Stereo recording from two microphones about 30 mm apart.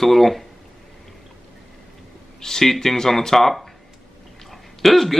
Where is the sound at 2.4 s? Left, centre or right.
Centre.